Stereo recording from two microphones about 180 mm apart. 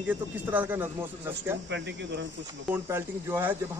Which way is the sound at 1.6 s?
80° right.